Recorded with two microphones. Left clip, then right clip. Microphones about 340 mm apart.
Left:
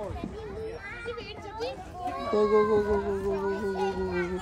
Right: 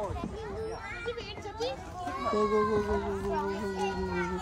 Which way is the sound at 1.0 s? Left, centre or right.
Right.